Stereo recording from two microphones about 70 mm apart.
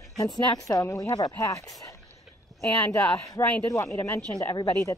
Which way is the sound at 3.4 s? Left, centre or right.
Left.